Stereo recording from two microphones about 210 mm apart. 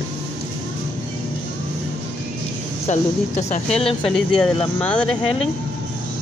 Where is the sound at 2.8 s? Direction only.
30° left (ahead or behind).